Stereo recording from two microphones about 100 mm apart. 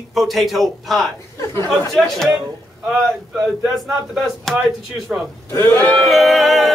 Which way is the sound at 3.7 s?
Centre (ahead or behind).